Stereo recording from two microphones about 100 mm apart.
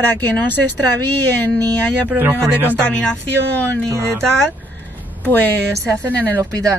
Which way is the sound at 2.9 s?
10° left (ahead or behind).